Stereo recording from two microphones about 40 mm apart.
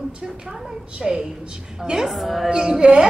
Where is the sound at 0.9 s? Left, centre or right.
Centre.